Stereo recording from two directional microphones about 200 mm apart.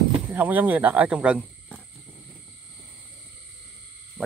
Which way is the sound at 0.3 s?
10° right (ahead or behind).